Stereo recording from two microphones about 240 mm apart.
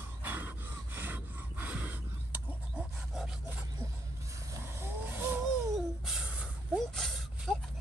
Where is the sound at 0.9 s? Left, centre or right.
Centre.